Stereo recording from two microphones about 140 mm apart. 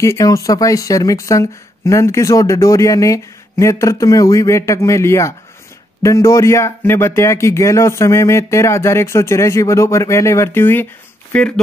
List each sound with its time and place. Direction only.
0.0 s speech: 20° left (ahead or behind)